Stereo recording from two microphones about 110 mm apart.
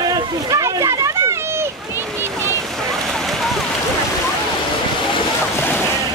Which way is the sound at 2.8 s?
5° left (ahead or behind).